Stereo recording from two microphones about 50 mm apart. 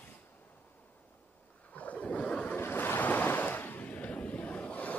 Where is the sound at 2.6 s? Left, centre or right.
Left.